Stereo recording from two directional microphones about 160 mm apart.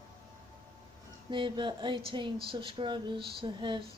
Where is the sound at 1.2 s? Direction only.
30° right (ahead or behind).